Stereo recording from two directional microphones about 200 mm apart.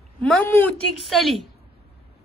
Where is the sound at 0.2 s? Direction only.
5° left (ahead or behind).